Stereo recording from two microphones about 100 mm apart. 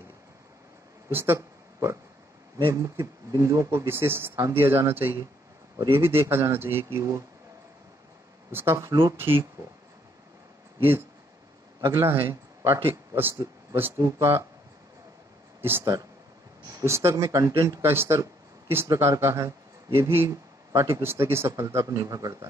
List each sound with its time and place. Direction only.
1.1 s speech: 25° right (ahead or behind)
8.5 s speech: 25° right (ahead or behind)
11.9 s a man's voice: 20° right (ahead or behind)
15.8 s speech: 35° right (ahead or behind)
17.8 s speech: 25° right (ahead or behind)